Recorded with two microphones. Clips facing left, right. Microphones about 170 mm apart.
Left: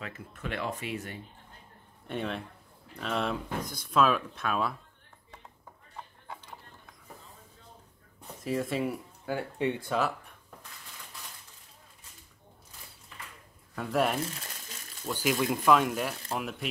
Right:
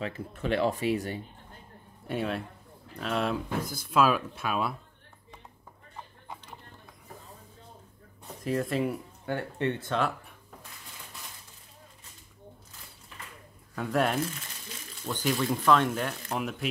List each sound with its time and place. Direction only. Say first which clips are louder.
0.0 s speech: right 6 dB; 30° right (ahead or behind)
2.0 s speech: right 3 dB; 5° right (ahead or behind)
8.5 s speech: right 2 dB; centre (ahead or behind)
13.7 s speech: right 1 dB; centre (ahead or behind)